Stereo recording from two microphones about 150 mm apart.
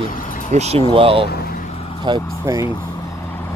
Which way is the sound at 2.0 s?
25° right (ahead or behind).